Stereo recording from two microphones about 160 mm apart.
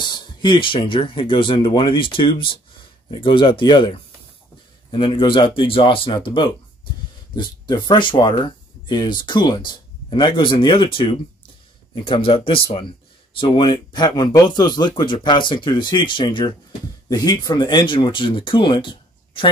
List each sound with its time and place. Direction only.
0.0 s speech: 30° left (ahead or behind)